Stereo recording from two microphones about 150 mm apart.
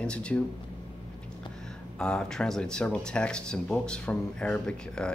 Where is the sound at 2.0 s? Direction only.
5° left (ahead or behind).